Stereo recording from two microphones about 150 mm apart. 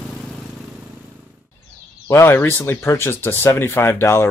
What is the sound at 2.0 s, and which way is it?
Speech, 15° left (ahead or behind).